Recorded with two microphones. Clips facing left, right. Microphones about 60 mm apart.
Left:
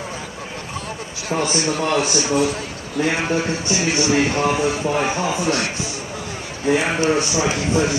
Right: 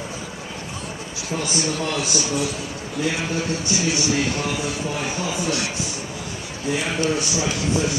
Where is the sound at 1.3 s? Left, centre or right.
Left.